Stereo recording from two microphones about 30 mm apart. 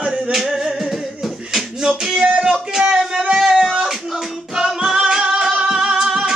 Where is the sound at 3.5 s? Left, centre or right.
Centre.